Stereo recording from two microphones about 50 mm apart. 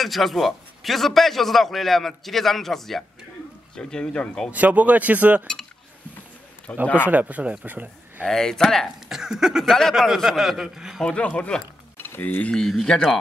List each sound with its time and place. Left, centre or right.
0.0 s a man's voice: centre
3.7 s speech: centre
4.5 s speech: right
6.7 s speech: left
7.1 s speech: right
8.3 s speech: centre
9.1 s a sound: centre
9.7 s speech: centre
9.9 s a man's voice: centre
11.1 s speech: left
12.0 s a sound: left
12.8 s speech: centre